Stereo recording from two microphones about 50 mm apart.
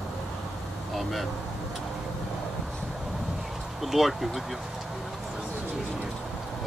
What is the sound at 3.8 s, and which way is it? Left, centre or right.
Speech, centre.